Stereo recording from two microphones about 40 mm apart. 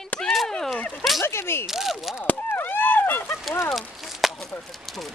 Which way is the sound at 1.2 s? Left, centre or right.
Left.